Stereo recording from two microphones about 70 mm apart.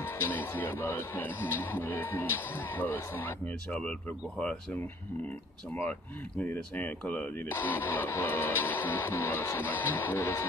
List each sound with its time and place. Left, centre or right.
0.0 s speech: left
6.4 s speech: left